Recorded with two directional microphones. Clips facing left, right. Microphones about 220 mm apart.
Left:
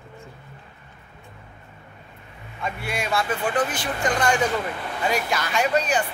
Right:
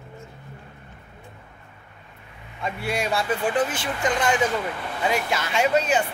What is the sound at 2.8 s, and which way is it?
Speech, 35° right (ahead or behind).